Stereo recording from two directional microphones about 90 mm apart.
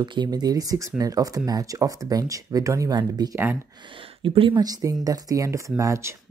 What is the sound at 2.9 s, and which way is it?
Speech, 50° right (ahead or behind).